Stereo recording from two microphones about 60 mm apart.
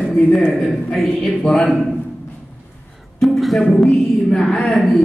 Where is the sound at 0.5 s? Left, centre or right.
Centre.